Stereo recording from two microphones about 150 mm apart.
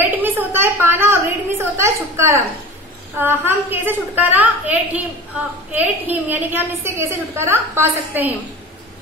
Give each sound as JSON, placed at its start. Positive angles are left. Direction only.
{"t": 0.0, "sound": "a woman's voice", "side_deg": -15}